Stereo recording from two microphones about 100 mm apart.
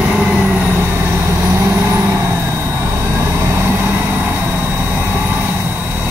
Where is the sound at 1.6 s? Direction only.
25° right (ahead or behind).